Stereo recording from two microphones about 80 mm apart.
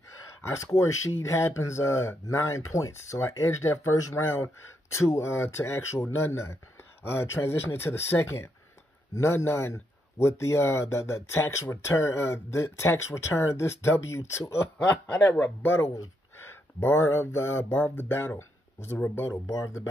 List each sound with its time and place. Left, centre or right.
0.4 s speech: left
14.8 s speech: centre
15.7 s speech: left
19.4 s speech: left